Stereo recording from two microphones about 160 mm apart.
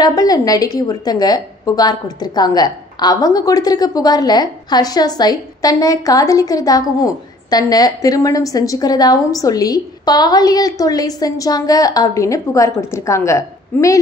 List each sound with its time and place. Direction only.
0.0 s a woman's voice: 25° left (ahead or behind)